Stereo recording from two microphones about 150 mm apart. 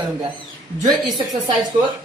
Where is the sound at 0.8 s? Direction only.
25° right (ahead or behind).